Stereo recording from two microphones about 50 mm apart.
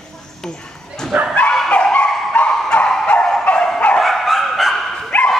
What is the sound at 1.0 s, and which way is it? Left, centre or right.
Bow-wow, centre.